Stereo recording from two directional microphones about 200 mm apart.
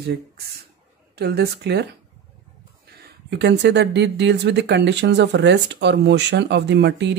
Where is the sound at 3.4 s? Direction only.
60° right (ahead or behind).